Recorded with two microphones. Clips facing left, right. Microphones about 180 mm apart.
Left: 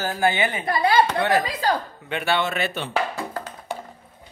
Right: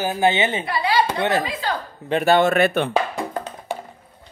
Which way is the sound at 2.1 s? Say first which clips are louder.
Right 8 dB; 40° right (ahead or behind).